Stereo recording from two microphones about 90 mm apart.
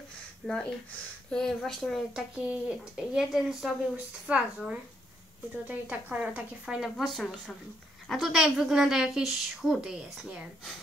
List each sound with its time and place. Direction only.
0.4 s a woman's voice: centre (ahead or behind)
2.1 s speech: 10° right (ahead or behind)
4.3 s speech: 15° right (ahead or behind)
5.7 s speech: 20° right (ahead or behind)
6.1 s a woman's voice: 10° right (ahead or behind)